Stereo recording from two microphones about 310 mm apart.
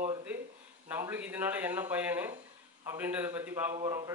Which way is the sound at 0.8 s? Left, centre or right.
Centre.